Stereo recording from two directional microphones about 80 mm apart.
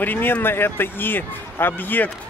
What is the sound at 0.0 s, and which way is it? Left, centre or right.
Speech, left.